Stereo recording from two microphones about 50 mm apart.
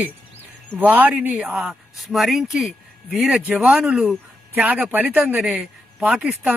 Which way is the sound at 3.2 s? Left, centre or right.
Right.